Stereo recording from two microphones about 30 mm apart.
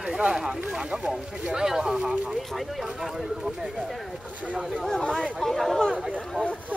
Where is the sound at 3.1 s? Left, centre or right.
Centre.